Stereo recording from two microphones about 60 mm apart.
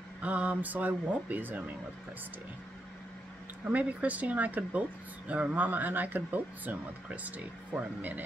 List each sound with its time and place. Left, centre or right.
0.2 s speech: right
3.6 s speech: right